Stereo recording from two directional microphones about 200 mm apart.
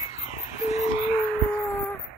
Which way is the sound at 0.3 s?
35° left (ahead or behind).